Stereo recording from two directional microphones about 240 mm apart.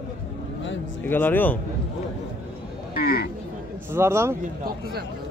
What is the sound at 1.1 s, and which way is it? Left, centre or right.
Speech, centre.